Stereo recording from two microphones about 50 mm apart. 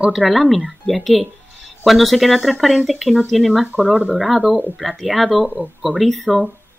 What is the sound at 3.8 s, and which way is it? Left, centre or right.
Speech, right.